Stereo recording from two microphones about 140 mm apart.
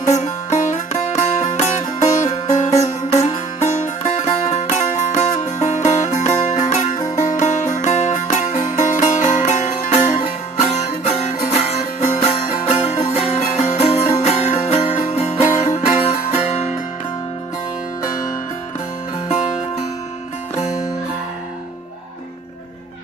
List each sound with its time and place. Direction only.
0.1 s music: 55° left (ahead or behind)